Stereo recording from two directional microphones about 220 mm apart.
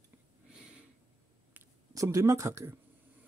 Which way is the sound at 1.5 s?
15° right (ahead or behind).